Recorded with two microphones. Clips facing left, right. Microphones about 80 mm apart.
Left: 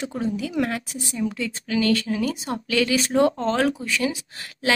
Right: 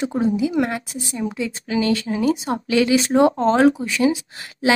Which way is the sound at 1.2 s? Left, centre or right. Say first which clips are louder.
Right 1 dB; centre.